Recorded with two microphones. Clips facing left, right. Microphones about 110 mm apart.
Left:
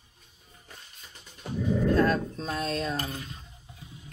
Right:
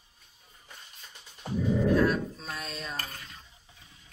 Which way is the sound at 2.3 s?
Centre (ahead or behind).